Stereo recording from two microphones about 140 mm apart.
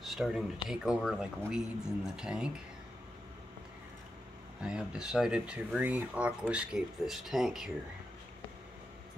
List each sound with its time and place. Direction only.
0.0 s speech: centre (ahead or behind)
4.6 s speech: 5° right (ahead or behind)